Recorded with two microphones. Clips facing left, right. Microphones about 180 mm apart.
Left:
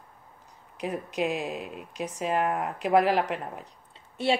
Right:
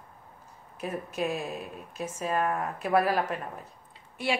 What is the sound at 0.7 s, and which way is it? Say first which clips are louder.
A woman's voice: left 2 dB; 15° left (ahead or behind).